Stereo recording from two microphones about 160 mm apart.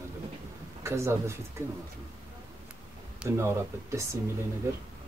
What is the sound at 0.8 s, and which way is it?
Speech, 15° right (ahead or behind).